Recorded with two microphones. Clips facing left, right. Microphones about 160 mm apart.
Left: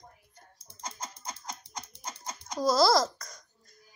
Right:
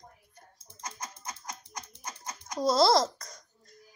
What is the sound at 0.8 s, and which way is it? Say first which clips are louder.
Typing: left 1 dB; 30° left (ahead or behind).